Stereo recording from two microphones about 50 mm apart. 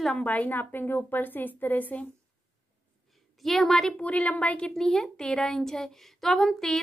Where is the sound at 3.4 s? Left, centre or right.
Centre.